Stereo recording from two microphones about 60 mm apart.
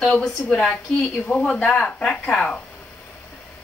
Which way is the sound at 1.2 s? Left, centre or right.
Centre.